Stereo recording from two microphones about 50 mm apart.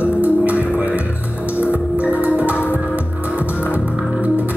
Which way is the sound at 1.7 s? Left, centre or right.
Right.